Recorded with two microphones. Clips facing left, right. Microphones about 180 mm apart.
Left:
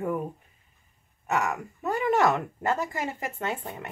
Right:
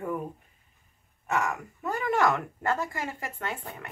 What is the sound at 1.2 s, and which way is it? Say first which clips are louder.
A woman's voice: left 1 dB; 20° left (ahead or behind).